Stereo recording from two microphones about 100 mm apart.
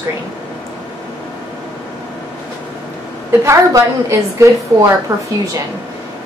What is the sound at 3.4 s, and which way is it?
A woman's voice, 30° right (ahead or behind).